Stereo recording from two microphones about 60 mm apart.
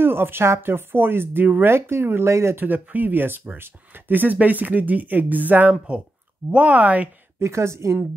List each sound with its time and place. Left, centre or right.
0.0 s speech: right
1.7 s speech: right
2.5 s speech: right
7.3 s speech: right